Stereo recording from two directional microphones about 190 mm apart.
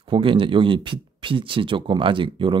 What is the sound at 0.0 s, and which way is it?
Speech, 25° right (ahead or behind).